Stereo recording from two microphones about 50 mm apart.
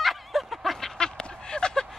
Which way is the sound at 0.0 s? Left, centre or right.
Centre.